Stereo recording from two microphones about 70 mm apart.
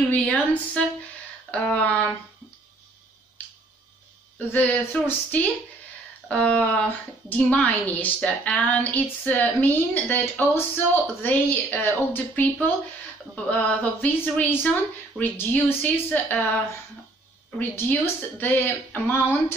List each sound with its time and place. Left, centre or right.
0.1 s a woman's voice: centre
4.5 s a woman's voice: left
17.6 s a woman's voice: left